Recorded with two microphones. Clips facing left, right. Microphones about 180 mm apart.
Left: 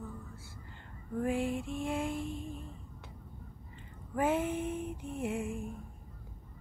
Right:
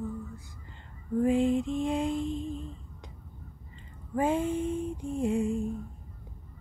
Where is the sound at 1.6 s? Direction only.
20° right (ahead or behind).